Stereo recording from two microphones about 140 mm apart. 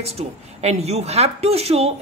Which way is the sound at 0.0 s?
50° right (ahead or behind).